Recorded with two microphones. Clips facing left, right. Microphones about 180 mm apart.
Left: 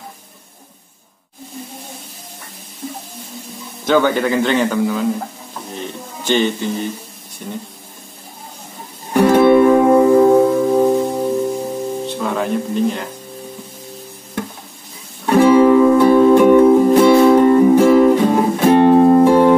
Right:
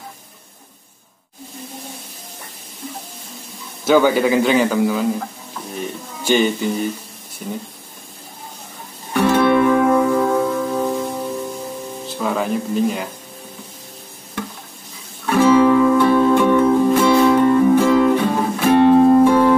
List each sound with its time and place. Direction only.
3.8 s a man's voice: 10° right (ahead or behind)
6.2 s a man's voice: 10° right (ahead or behind)
9.1 s music: 15° left (ahead or behind)
12.1 s speech: centre (ahead or behind)
15.3 s guitar: 15° left (ahead or behind)
16.1 s music: 15° left (ahead or behind)
17.3 s music: 30° left (ahead or behind)
17.6 s music: 20° left (ahead or behind)